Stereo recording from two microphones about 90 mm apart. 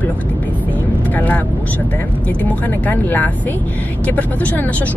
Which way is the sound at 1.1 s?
20° left (ahead or behind).